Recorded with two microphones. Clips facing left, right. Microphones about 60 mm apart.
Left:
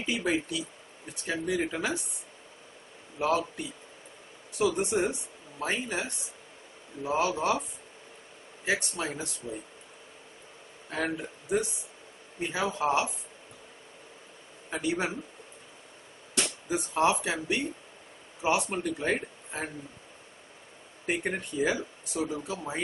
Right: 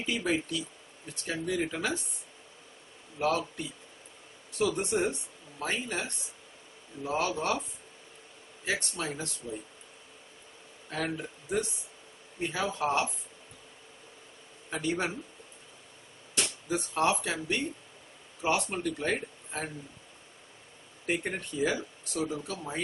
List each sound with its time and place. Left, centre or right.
0.0 s speech: centre
3.2 s speech: centre
4.6 s speech: centre
8.6 s speech: centre
10.9 s a man's voice: centre
14.7 s speech: centre
16.6 s speech: centre
21.1 s speech: centre